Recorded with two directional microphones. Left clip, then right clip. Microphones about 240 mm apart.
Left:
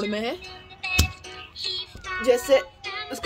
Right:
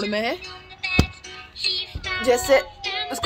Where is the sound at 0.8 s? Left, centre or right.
Left.